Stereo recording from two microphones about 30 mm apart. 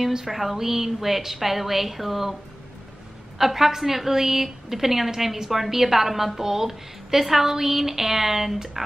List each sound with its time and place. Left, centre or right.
0.1 s a woman's voice: centre
3.3 s a woman's voice: centre